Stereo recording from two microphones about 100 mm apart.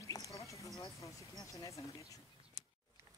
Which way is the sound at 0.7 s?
35° left (ahead or behind).